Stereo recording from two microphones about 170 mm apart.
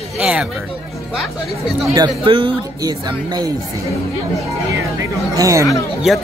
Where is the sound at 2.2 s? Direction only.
30° right (ahead or behind).